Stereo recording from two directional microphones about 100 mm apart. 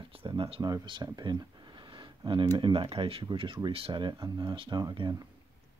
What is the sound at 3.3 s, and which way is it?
Speech, 55° right (ahead or behind).